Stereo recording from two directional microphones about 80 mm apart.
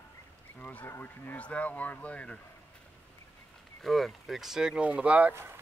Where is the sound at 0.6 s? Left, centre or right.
Centre.